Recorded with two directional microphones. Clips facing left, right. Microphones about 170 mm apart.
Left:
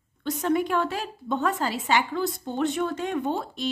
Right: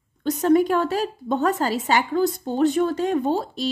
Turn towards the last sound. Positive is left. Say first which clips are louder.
# right 5 dB
turn(degrees=-35)  # may be behind; listen again after turning